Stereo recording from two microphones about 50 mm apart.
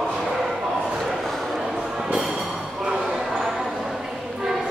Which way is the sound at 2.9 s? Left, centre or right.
Centre.